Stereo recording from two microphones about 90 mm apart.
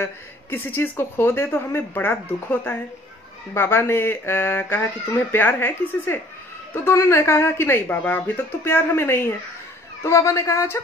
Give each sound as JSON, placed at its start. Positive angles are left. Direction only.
{"t": 0.0, "sound": "speech", "side_deg": 25}